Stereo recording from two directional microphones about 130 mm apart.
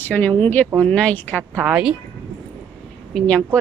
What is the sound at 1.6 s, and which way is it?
Speech, 10° right (ahead or behind).